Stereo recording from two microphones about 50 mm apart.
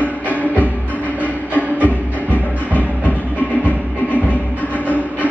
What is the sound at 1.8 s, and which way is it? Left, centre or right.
Music, left.